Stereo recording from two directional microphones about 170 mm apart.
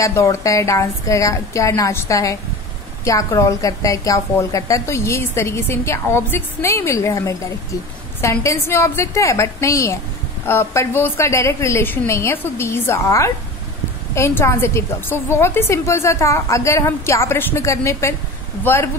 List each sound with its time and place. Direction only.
0.0 s a woman's voice: 15° left (ahead or behind)